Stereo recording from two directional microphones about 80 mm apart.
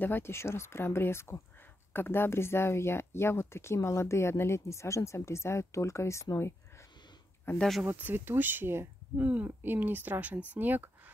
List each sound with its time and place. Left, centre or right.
0.0 s speech: left
7.5 s speech: left
7.8 s speech: right